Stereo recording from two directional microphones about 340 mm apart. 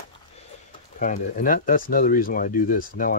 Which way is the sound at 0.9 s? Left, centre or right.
Left.